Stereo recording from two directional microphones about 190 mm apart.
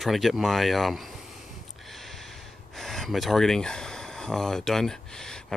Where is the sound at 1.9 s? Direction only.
Centre (ahead or behind).